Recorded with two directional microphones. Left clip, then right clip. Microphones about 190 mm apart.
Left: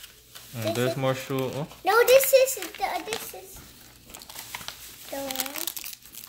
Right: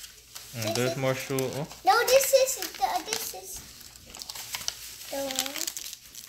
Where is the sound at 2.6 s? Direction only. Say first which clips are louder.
Right 1 dB; 20° left (ahead or behind).